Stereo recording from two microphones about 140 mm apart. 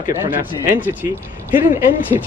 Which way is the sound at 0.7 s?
15° right (ahead or behind).